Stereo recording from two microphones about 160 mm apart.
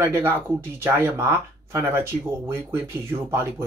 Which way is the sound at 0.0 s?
15° right (ahead or behind).